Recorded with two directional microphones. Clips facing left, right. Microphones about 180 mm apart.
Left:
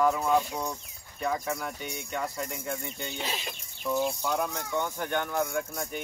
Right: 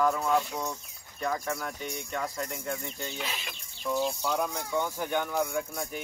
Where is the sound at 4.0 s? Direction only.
15° left (ahead or behind).